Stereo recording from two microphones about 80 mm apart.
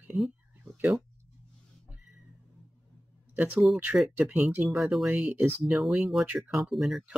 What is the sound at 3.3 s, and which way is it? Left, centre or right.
Speech, right.